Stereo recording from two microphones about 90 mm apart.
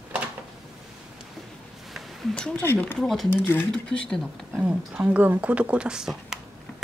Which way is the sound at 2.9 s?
Centre (ahead or behind).